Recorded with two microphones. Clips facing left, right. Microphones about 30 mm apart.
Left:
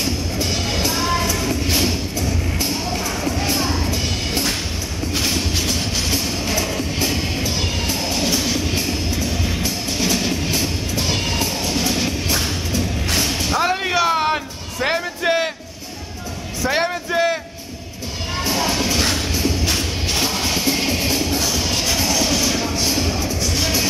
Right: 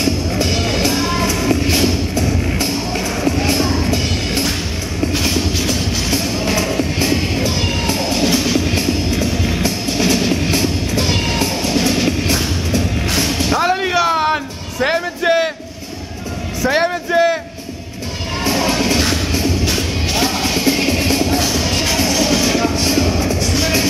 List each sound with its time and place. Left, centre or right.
0.0 s music: centre
16.6 s a sound: centre
18.4 s music: centre